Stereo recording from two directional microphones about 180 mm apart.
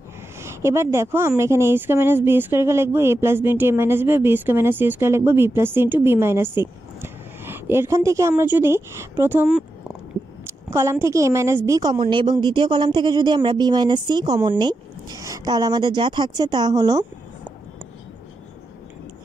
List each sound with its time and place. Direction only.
0.4 s a woman's voice: 15° right (ahead or behind)